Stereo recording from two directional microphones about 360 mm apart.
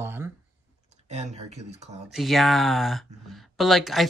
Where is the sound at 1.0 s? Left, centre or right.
Centre.